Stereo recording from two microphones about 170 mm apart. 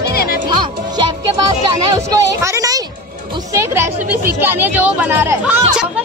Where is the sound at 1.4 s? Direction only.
20° right (ahead or behind).